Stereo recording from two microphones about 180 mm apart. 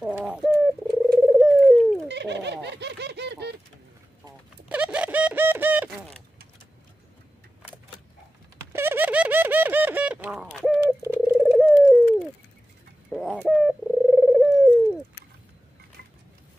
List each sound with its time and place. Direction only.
0.0 s bird: centre (ahead or behind)
2.0 s bird: 70° right (ahead or behind)
4.6 s bird: 5° right (ahead or behind)
8.7 s a sound: 10° right (ahead or behind)
11.3 s bird: centre (ahead or behind)